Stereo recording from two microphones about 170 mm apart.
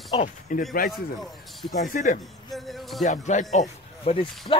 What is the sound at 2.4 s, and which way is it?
Music, centre (ahead or behind).